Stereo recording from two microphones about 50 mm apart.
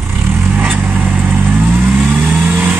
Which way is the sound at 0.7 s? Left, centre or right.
Right.